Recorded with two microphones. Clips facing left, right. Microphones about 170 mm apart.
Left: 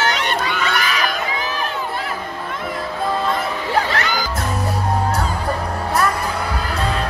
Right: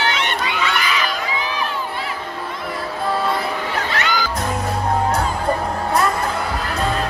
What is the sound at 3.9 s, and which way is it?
Music, 40° left (ahead or behind).